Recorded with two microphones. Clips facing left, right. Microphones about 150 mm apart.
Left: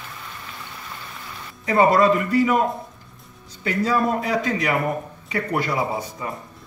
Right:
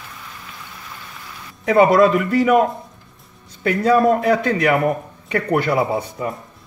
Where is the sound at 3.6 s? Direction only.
60° right (ahead or behind).